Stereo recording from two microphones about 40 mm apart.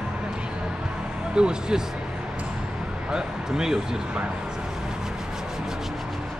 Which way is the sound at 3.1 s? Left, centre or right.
Centre.